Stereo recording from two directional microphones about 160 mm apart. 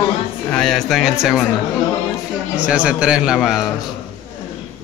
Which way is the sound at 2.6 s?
5° right (ahead or behind).